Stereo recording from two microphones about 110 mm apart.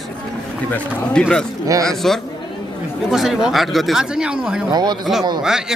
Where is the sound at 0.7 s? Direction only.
5° left (ahead or behind).